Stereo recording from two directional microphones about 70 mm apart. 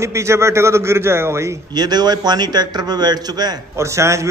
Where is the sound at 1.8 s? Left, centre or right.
Right.